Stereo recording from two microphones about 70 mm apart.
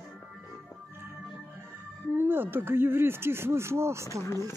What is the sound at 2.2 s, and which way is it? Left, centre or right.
Speech, right.